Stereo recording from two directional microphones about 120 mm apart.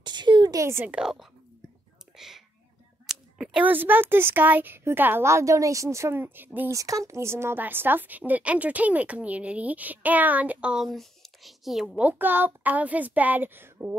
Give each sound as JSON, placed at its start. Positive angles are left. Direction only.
{"t": 0.0, "sound": "a sound", "side_deg": -40}
{"t": 0.8, "sound": "a woman's voice", "side_deg": -5}
{"t": 2.1, "sound": "whispering", "side_deg": -5}
{"t": 3.1, "sound": "a woman's voice", "side_deg": -10}
{"t": 6.7, "sound": "a woman's voice", "side_deg": -30}